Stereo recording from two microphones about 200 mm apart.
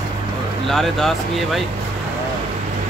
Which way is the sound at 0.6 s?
Centre (ahead or behind).